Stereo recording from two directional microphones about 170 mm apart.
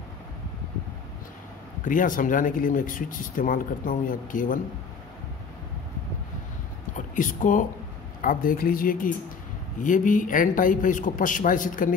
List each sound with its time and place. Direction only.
1.9 s speech: 50° left (ahead or behind)
6.9 s a sound: 50° left (ahead or behind)
8.2 s speech: 55° left (ahead or behind)